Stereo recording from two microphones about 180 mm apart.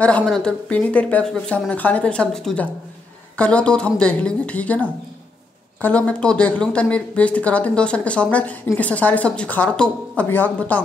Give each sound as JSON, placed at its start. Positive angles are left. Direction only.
{"t": 0.0, "sound": "speech", "side_deg": 5}